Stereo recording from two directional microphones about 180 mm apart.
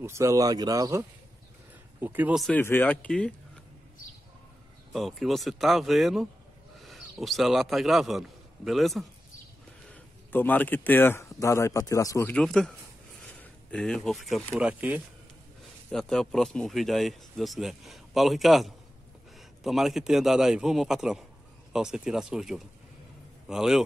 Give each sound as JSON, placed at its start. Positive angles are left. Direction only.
{"t": 0.0, "sound": "speech", "side_deg": -15}
{"t": 2.4, "sound": "speech", "side_deg": 10}
{"t": 4.9, "sound": "a man's voice", "side_deg": 0}
{"t": 9.8, "sound": "speech", "side_deg": 10}
{"t": 15.9, "sound": "speech", "side_deg": 5}